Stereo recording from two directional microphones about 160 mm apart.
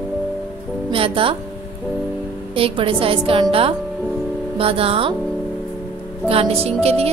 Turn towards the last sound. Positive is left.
turn(degrees=-40)  # may be behind; listen again after turning